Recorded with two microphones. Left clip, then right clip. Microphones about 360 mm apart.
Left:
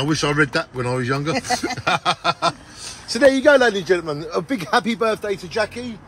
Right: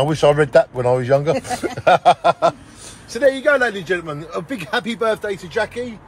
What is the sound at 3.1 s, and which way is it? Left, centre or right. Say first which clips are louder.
A man's voice: left 2 dB; left.